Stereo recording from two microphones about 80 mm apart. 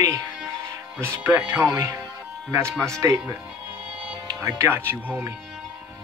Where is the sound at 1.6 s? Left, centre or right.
Right.